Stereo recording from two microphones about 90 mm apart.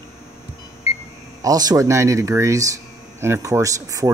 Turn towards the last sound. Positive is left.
turn(degrees=-40)  # may be behind; listen again after turning